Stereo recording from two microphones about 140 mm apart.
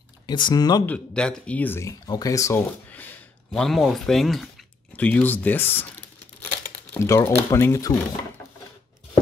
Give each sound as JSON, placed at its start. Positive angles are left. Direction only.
{"t": 0.3, "sound": "speech", "side_deg": 35}
{"t": 0.8, "sound": "speech", "side_deg": 5}
{"t": 2.9, "sound": "a sound", "side_deg": 10}
{"t": 4.9, "sound": "speech", "side_deg": 10}